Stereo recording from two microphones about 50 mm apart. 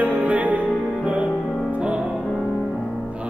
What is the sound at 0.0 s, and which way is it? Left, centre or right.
Music, right.